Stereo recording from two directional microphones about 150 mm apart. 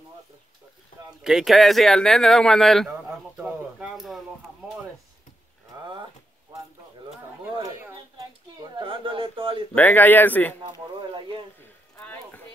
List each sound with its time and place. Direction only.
1.2 s speech: centre (ahead or behind)
8.6 s speech: 35° right (ahead or behind)
9.8 s speech: 10° left (ahead or behind)
10.6 s speech: 30° right (ahead or behind)
12.0 s a sound: 10° left (ahead or behind)